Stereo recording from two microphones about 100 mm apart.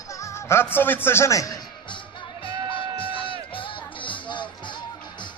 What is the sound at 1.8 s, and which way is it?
Music, 55° left (ahead or behind).